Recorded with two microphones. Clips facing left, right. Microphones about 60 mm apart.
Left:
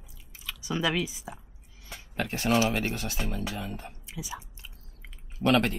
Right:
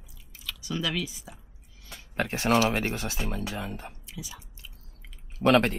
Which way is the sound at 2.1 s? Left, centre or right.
Right.